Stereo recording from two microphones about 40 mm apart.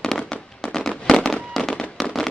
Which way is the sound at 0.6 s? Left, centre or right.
Centre.